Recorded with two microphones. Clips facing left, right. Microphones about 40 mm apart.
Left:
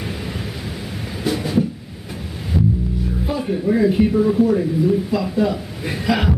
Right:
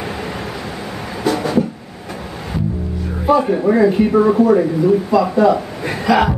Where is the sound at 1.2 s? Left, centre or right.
Right.